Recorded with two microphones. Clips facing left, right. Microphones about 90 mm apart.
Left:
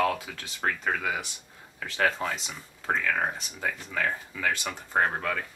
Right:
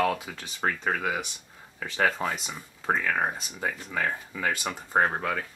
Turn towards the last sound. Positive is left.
turn(degrees=-10)  # may be behind; listen again after turning